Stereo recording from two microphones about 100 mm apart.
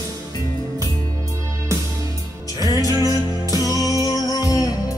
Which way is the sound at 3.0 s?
35° left (ahead or behind).